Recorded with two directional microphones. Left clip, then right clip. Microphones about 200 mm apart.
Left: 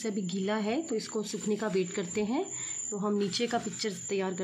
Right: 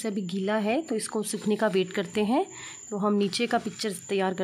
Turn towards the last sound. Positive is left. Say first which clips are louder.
# right 5 dB
turn(degrees=-45)  # may be behind; listen again after turning